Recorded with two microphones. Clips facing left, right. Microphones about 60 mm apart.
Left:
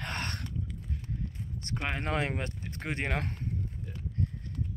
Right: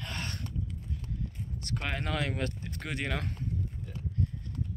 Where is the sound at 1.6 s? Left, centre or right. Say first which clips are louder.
Left 1 dB; centre.